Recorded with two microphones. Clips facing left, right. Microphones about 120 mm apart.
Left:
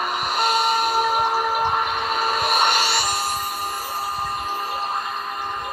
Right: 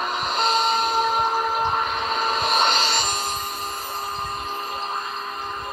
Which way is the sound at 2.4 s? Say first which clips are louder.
Left 1 dB; 10° left (ahead or behind).